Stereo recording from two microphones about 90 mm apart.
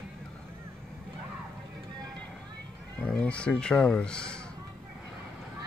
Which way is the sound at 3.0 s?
10° left (ahead or behind).